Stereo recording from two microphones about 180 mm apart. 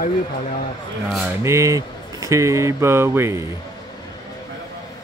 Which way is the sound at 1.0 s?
Centre (ahead or behind).